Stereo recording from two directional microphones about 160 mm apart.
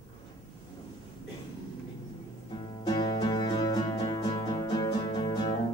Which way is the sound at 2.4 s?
30° left (ahead or behind).